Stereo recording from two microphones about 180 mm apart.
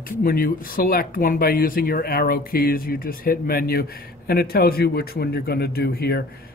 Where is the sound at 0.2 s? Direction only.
55° left (ahead or behind).